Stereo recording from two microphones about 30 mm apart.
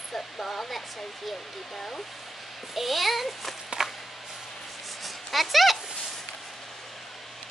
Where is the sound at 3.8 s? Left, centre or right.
Centre.